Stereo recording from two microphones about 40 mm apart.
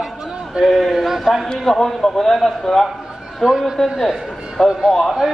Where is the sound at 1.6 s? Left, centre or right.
Centre.